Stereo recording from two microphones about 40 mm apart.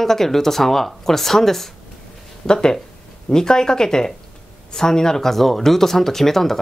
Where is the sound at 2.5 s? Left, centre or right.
Centre.